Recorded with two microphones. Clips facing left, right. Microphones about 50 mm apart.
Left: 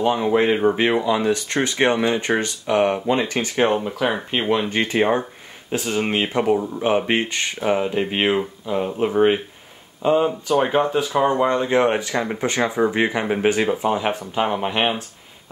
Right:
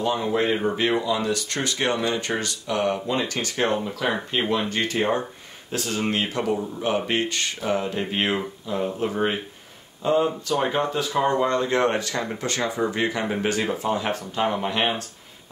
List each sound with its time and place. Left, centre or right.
0.0 s speech: left